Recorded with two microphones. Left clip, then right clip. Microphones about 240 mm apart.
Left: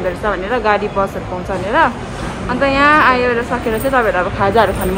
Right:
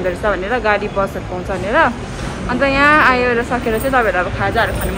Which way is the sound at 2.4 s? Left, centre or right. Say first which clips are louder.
Left 1 dB; centre.